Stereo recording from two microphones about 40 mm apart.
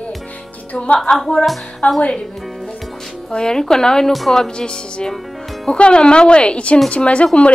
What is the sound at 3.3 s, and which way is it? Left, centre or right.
A woman's voice, centre.